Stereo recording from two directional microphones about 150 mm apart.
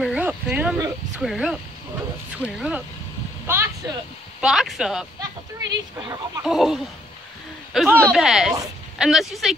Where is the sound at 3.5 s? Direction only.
15° right (ahead or behind).